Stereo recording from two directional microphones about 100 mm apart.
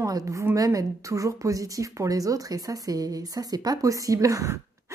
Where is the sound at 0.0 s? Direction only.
35° right (ahead or behind).